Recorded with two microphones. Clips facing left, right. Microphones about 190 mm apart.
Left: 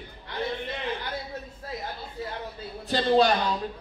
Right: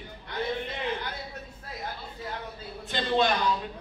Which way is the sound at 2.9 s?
35° left (ahead or behind).